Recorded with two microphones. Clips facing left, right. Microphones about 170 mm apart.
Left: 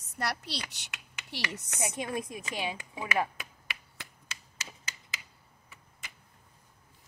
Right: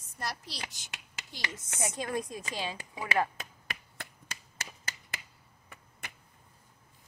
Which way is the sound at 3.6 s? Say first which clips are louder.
Right 2 dB; 50° right (ahead or behind).